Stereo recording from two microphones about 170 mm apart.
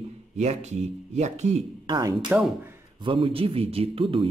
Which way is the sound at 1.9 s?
20° right (ahead or behind).